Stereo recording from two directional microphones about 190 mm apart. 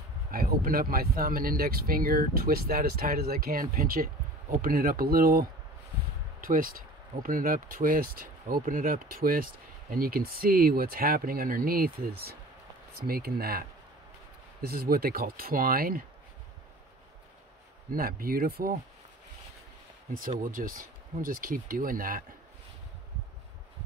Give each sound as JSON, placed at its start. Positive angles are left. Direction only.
{"t": 0.3, "sound": "speech", "side_deg": -50}
{"t": 17.9, "sound": "speech", "side_deg": -50}
{"t": 20.4, "sound": "speech", "side_deg": -45}